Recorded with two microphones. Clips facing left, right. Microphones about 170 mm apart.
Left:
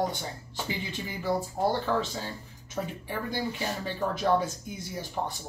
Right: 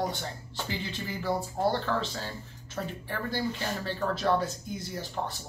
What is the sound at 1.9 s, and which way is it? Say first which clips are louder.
Speech: left 2 dB; 10° left (ahead or behind).